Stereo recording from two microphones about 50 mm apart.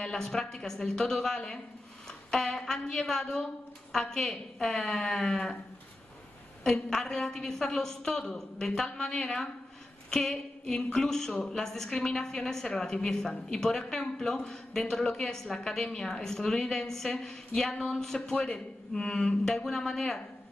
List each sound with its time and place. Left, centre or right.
0.0 s a woman's voice: centre
6.6 s a woman's voice: centre